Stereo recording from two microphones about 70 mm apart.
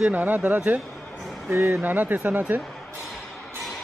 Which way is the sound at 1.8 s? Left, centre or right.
Right.